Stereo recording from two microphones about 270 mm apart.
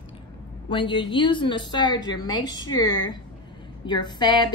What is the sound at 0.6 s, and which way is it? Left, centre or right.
A woman's voice, centre.